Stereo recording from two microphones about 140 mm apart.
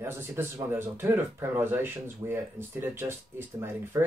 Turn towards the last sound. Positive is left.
turn(degrees=-15)  # may be behind; listen again after turning